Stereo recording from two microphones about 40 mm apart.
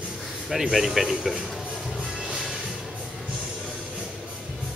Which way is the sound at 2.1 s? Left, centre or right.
Right.